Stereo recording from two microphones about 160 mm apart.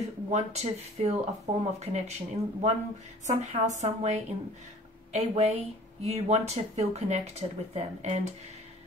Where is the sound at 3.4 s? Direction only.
45° right (ahead or behind).